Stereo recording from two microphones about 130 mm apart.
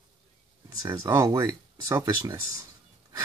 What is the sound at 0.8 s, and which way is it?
Speech, 25° right (ahead or behind).